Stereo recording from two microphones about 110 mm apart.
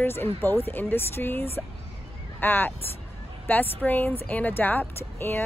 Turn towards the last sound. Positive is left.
turn(degrees=20)  # may be behind; listen again after turning